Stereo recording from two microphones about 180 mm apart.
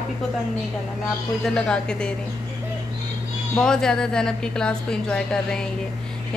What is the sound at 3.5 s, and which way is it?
A woman's voice, 5° left (ahead or behind).